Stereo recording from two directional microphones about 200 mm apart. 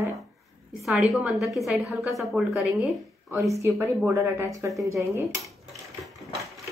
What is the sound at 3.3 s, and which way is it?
Speech, 15° right (ahead or behind).